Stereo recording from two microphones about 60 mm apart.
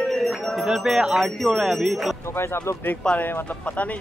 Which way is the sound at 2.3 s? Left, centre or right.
Left.